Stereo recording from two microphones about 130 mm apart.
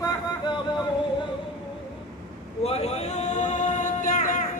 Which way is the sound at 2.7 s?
55° left (ahead or behind).